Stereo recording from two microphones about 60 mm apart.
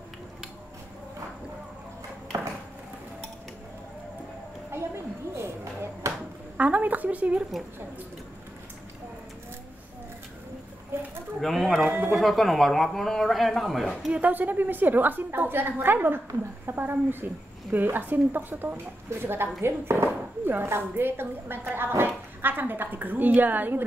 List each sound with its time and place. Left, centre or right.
4.6 s a sound: right
6.5 s a woman's voice: right
11.4 s speech: centre
14.1 s speech: right